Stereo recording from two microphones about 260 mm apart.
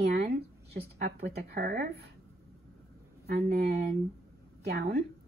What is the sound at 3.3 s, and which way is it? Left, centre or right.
Speech, right.